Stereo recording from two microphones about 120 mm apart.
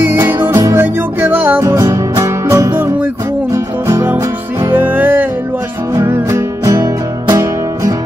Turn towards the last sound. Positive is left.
turn(degrees=-30)  # may be behind; listen again after turning